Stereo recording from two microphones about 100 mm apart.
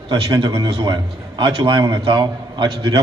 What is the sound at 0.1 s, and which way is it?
A man's voice, 55° right (ahead or behind).